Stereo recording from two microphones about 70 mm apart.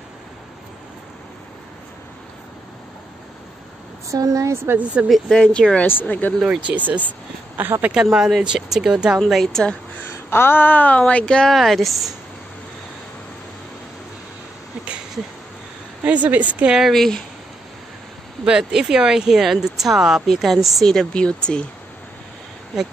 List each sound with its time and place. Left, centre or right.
4.1 s speech: right
5.0 s speech: centre
5.4 s speech: centre
5.9 s speech: left
6.7 s a woman's voice: centre
7.9 s speech: centre
9.3 s speech: centre
10.0 s speech: left; by 12.1 s centre
16.0 s a woman's voice: right
16.7 s speech: centre
18.4 s speech: centre